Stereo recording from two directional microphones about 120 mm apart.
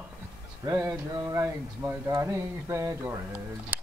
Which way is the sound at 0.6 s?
25° right (ahead or behind).